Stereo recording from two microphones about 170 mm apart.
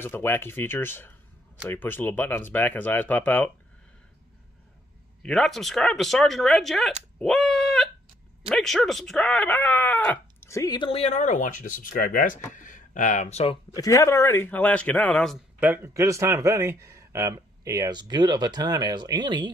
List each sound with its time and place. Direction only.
0.0 s speech: 15° left (ahead or behind)
5.2 s speech: centre (ahead or behind)
7.2 s dog: centre (ahead or behind)
8.5 s speech: centre (ahead or behind); by 13.6 s 40° left (ahead or behind)
13.7 s speech: 20° left (ahead or behind)
15.6 s speech: 15° right (ahead or behind)